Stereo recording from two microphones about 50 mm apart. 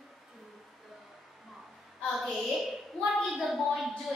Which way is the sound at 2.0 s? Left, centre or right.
Centre.